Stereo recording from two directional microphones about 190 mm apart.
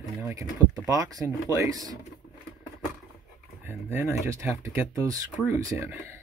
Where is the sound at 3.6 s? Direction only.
10° right (ahead or behind).